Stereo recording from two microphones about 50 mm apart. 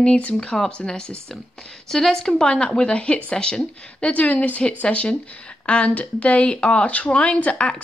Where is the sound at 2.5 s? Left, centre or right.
Left.